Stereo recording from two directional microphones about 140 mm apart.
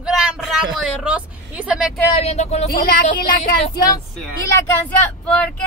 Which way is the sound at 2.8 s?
80° left.